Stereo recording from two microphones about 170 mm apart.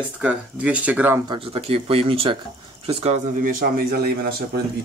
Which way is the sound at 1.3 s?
35° right (ahead or behind).